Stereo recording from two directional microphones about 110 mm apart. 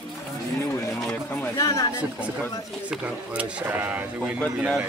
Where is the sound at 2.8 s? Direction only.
10° right (ahead or behind).